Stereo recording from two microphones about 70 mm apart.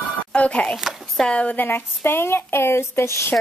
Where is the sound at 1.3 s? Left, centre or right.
Centre.